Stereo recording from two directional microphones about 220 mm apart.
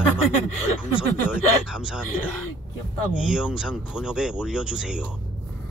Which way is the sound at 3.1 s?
5° right (ahead or behind).